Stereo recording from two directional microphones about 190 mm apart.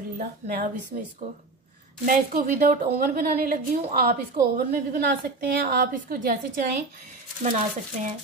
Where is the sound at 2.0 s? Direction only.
50° right (ahead or behind).